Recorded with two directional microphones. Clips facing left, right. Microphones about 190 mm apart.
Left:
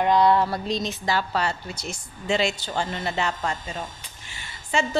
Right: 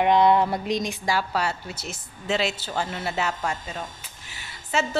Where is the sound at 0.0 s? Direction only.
20° right (ahead or behind).